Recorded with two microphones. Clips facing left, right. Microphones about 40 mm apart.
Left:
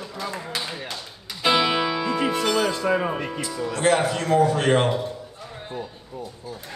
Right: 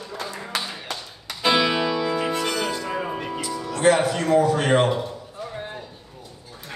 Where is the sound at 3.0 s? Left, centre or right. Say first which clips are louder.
Left 3 dB; left.